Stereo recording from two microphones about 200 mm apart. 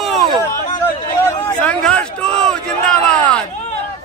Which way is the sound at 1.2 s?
10° left (ahead or behind).